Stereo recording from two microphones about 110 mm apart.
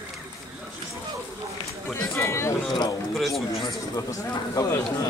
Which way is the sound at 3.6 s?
30° left (ahead or behind).